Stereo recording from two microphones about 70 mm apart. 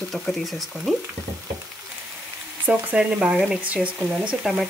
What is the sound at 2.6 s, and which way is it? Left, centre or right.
Speech, right.